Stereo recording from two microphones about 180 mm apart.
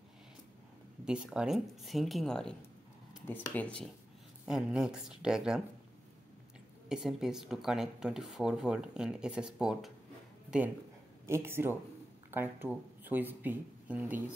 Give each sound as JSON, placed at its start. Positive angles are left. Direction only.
{"t": 1.0, "sound": "speech", "side_deg": -5}
{"t": 3.5, "sound": "speech", "side_deg": 5}
{"t": 6.9, "sound": "speech", "side_deg": -5}
{"t": 11.2, "sound": "speech", "side_deg": -15}